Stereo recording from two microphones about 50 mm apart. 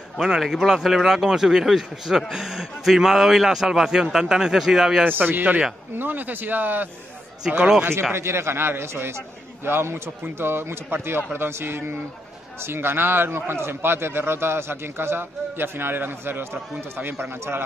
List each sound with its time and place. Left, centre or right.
0.4 s a man's voice: centre
5.0 s a man's voice: right
7.5 s speech: right
8.1 s a man's voice: right